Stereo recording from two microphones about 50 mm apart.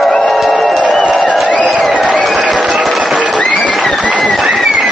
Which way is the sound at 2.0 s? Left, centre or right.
Left.